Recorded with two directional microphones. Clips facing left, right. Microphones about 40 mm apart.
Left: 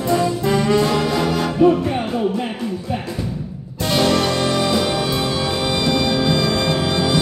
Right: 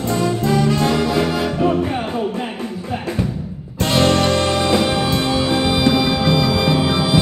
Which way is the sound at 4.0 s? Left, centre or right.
Right.